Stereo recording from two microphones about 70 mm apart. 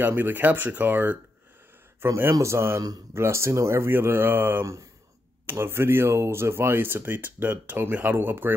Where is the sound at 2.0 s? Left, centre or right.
Right.